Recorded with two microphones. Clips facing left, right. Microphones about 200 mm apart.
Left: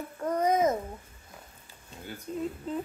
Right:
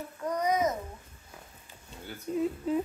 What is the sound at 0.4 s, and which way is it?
Babbling, 50° left (ahead or behind).